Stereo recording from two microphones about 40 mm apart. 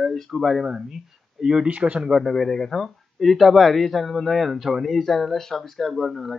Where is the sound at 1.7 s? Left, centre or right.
Right.